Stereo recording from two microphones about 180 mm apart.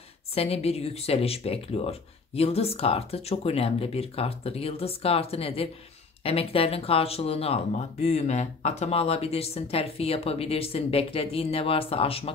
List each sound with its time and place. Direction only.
0.3 s speech: 35° left (ahead or behind)